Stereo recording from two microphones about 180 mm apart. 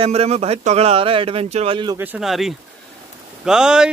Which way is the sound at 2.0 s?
5° right (ahead or behind).